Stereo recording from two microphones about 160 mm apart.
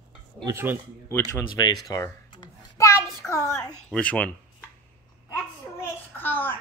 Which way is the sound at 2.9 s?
20° left (ahead or behind).